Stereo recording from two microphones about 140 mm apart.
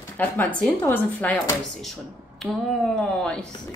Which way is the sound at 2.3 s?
5° left (ahead or behind).